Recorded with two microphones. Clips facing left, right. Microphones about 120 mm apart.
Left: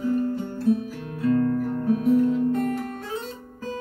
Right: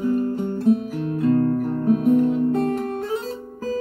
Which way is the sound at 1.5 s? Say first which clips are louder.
Right 3 dB; 40° right (ahead or behind).